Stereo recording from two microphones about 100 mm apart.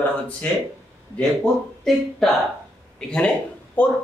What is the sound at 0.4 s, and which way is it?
A man's voice, 15° left (ahead or behind).